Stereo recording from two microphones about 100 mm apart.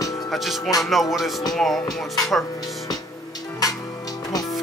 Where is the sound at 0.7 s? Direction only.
Centre (ahead or behind).